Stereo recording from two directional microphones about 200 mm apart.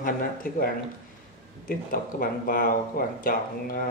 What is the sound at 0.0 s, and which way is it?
Speech, 45° left (ahead or behind).